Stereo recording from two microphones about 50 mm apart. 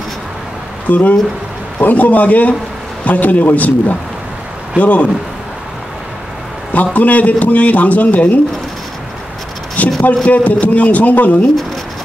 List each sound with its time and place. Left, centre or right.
0.8 s a man's voice: left
6.7 s a man's voice: left
9.8 s a sound: left
10.2 s a man's voice: left